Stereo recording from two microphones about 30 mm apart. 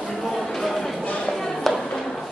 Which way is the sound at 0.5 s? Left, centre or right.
Centre.